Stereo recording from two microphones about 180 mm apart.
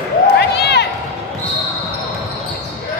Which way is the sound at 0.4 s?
65° left (ahead or behind).